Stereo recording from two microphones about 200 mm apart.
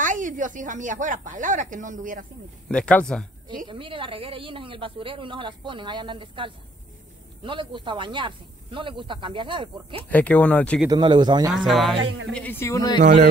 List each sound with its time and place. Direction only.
0.0 s speech: 40° right (ahead or behind)
2.7 s speech: 5° left (ahead or behind)
3.4 s speech: 25° right (ahead or behind)
10.0 s speech: 5° left (ahead or behind)
10.9 s speech: 20° right (ahead or behind)
11.5 s speech: centre (ahead or behind)
12.0 s speech: 80° right
12.3 s speech: 5° left (ahead or behind)